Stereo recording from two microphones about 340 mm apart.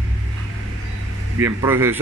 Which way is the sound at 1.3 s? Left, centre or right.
Centre.